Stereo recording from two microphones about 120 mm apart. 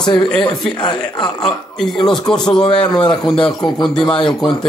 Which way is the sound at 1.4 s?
5° left (ahead or behind).